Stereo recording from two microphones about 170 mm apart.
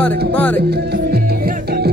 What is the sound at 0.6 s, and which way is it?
Music, 70° right (ahead or behind).